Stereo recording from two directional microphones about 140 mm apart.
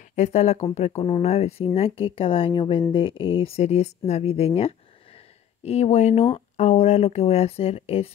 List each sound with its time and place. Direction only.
0.1 s speech: 55° left (ahead or behind)
5.6 s speech: 50° left (ahead or behind)